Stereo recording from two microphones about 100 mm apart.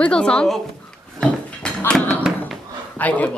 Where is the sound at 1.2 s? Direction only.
5° left (ahead or behind).